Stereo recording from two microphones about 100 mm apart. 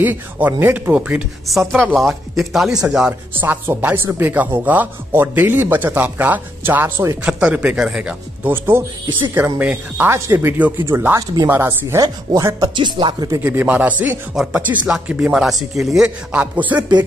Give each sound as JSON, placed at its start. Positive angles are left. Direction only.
{"t": 0.0, "sound": "a woman's voice", "side_deg": -20}
{"t": 1.7, "sound": "speech", "side_deg": 5}
{"t": 3.3, "sound": "a woman's voice", "side_deg": -20}
{"t": 7.2, "sound": "speech", "side_deg": -10}
{"t": 8.5, "sound": "a woman's voice", "side_deg": -25}
{"t": 12.0, "sound": "speech", "side_deg": -40}
{"t": 12.7, "sound": "speech", "side_deg": -50}
{"t": 13.4, "sound": "speech", "side_deg": -20}
{"t": 16.3, "sound": "speech", "side_deg": -15}